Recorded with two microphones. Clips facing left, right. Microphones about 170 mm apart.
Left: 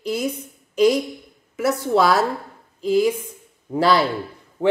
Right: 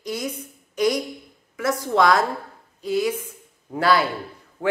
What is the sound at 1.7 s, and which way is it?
Speech, 25° left (ahead or behind).